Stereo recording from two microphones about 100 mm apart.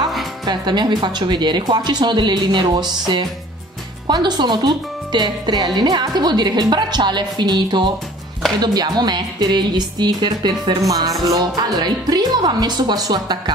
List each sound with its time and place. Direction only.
0.5 s speech: 45° right (ahead or behind)
10.8 s music: 35° right (ahead or behind)
11.2 s speech: 40° right (ahead or behind)